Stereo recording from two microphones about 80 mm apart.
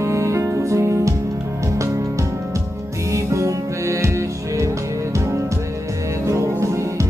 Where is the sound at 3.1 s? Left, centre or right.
Right.